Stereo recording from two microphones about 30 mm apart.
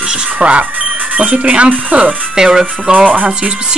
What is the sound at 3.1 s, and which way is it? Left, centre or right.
Speech, right.